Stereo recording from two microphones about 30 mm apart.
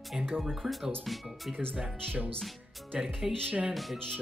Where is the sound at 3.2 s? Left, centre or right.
Centre.